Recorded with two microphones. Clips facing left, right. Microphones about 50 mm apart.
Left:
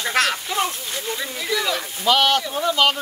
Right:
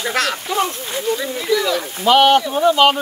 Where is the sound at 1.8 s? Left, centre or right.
Right.